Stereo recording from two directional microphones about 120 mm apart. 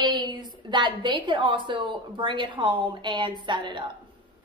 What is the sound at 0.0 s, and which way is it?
A woman's voice, 35° right (ahead or behind).